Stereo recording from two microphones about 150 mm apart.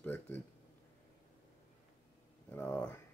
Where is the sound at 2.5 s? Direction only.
10° left (ahead or behind).